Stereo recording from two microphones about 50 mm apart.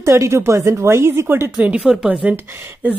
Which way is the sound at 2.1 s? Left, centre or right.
Right.